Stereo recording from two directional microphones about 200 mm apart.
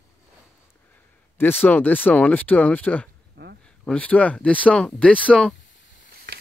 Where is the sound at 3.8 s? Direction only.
5° left (ahead or behind).